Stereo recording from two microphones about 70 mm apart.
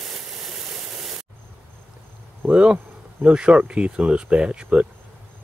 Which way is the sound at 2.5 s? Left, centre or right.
Centre.